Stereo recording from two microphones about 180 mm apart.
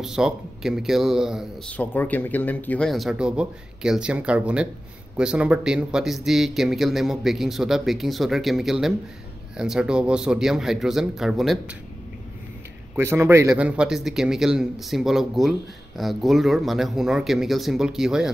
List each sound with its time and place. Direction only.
0.0 s speech: 5° right (ahead or behind)
1.8 s speech: 10° left (ahead or behind)
12.9 s a man's voice: 15° right (ahead or behind)